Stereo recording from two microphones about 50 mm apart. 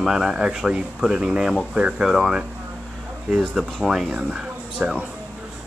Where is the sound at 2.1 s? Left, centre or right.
Centre.